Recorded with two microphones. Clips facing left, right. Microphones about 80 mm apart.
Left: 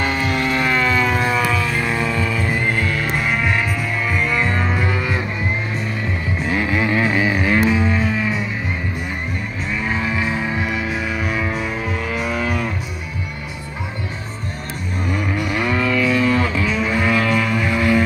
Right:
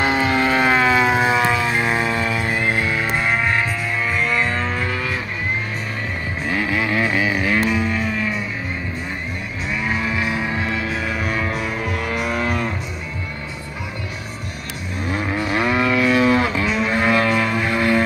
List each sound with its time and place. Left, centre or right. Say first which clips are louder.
0.0 s vehicle: right 2 dB; right; by 1.9 s centre
2.3 s music: even; centre
6.5 s vehicle: left 2 dB; centre
7.8 s music: left 2 dB; centre
9.8 s music: left 1 dB; centre
10.5 s music: left 1 dB; centre
15.3 s vehicle: right 2 dB; right
16.2 s a sound: right 1 dB; centre